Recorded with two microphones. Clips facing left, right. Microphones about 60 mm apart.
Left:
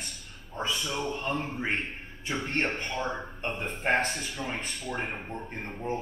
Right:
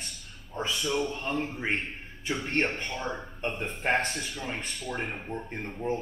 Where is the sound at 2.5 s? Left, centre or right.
Left.